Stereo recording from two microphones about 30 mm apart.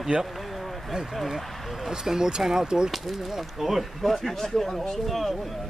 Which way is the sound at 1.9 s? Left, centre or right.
Centre.